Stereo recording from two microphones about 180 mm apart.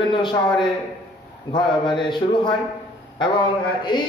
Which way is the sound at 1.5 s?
25° left (ahead or behind).